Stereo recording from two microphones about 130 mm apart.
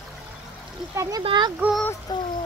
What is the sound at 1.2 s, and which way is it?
Child singing, 35° right (ahead or behind).